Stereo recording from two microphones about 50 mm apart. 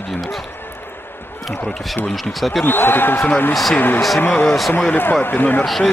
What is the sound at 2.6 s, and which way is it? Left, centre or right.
Speech, left.